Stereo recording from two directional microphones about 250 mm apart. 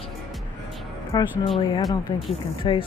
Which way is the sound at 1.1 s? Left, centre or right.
Centre.